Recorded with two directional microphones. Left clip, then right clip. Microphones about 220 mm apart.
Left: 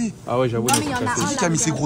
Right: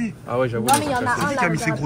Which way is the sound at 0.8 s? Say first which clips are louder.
Right 2 dB; 5° left (ahead or behind).